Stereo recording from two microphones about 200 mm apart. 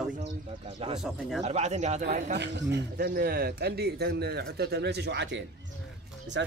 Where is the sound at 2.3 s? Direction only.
60° right (ahead or behind).